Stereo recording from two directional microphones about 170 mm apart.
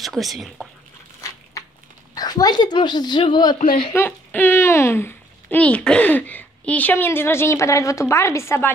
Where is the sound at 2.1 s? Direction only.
20° left (ahead or behind).